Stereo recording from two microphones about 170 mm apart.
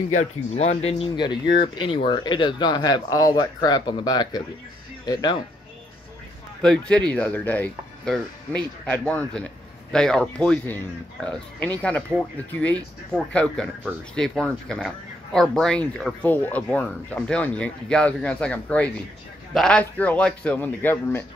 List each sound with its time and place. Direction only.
0.1 s speech: 45° left (ahead or behind); by 5.4 s 25° left (ahead or behind)
6.6 s speech: 5° left (ahead or behind)